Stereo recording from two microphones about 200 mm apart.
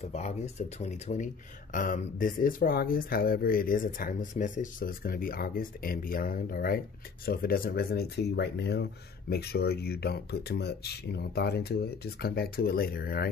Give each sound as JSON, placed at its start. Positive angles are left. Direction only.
{"t": 0.0, "sound": "speech", "side_deg": 35}